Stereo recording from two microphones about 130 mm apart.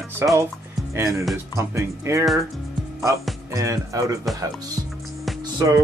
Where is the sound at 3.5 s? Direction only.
25° right (ahead or behind).